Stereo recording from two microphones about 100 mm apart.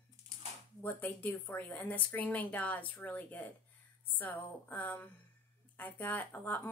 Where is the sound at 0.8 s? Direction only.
15° left (ahead or behind).